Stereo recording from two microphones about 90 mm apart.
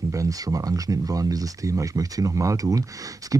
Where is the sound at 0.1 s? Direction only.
40° right (ahead or behind).